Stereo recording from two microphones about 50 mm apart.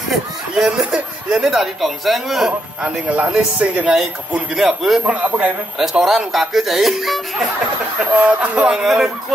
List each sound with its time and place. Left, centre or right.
0.6 s speech: centre
2.8 s a man's voice: right
4.6 s speech: centre
5.0 s a man's voice: right
5.8 s speech: centre
8.2 s a man's voice: right
8.6 s speech: centre